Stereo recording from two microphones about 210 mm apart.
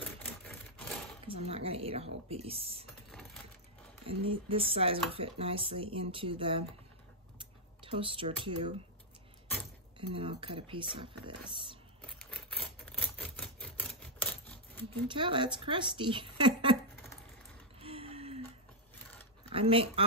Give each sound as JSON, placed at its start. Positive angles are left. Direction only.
{"t": 0.4, "sound": "typewriter", "side_deg": 0}
{"t": 1.2, "sound": "a sound", "side_deg": -25}
{"t": 2.2, "sound": "speech", "side_deg": -30}
{"t": 4.0, "sound": "speech", "side_deg": -25}
{"t": 10.1, "sound": "speech", "side_deg": -25}
{"t": 12.0, "sound": "a sound", "side_deg": 5}
{"t": 13.0, "sound": "typewriter", "side_deg": 5}
{"t": 15.0, "sound": "speech", "side_deg": -25}
{"t": 17.7, "sound": "gasp", "side_deg": -25}
{"t": 19.5, "sound": "speech", "side_deg": -25}